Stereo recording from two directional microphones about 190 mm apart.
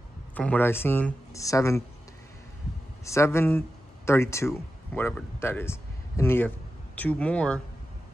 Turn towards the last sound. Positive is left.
turn(degrees=5)  # may be behind; listen again after turning